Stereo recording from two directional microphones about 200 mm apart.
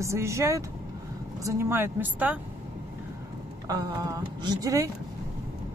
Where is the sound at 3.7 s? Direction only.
20° right (ahead or behind).